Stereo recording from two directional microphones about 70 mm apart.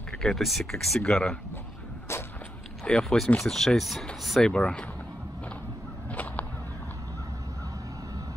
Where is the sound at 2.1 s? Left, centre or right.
Left.